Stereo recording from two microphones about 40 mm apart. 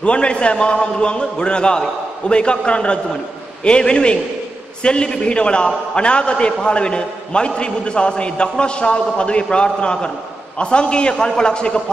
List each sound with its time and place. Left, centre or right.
0.0 s a man's voice: left